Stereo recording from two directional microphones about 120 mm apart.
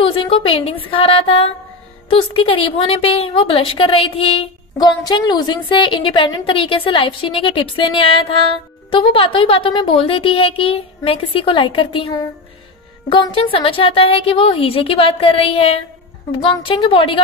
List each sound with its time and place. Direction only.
0.0 s a woman's voice: 50° left (ahead or behind)
4.7 s a woman's voice: 35° left (ahead or behind)
13.1 s a woman's voice: 45° left (ahead or behind)